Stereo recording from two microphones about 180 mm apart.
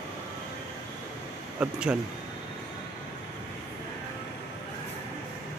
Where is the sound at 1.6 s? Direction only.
5° right (ahead or behind).